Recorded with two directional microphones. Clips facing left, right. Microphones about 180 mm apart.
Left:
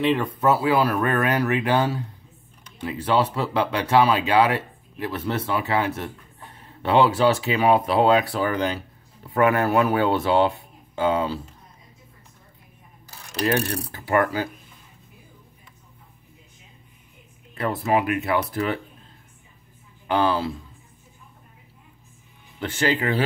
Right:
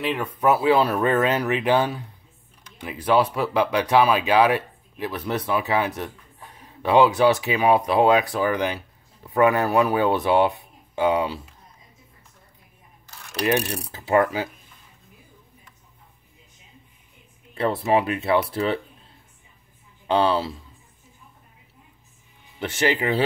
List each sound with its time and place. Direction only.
0.0 s speech: centre (ahead or behind)
0.4 s speech: 15° right (ahead or behind)
13.4 s speech: 15° right (ahead or behind)
17.6 s speech: 30° right (ahead or behind)
20.1 s speech: 25° right (ahead or behind)
22.6 s speech: 20° right (ahead or behind)